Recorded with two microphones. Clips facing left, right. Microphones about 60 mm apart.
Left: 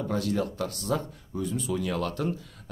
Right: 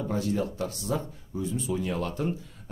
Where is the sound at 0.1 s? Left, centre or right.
Left.